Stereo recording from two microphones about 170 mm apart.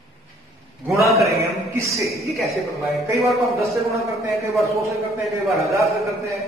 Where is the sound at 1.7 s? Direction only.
15° right (ahead or behind).